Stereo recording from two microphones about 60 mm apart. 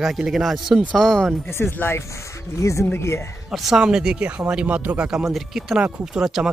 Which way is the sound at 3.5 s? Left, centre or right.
Centre.